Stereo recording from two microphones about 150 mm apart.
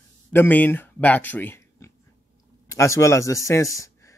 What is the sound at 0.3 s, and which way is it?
Speech, 15° left (ahead or behind).